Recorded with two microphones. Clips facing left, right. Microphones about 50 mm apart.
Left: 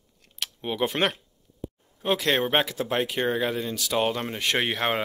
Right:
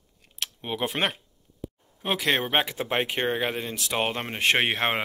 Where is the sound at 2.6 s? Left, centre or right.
Right.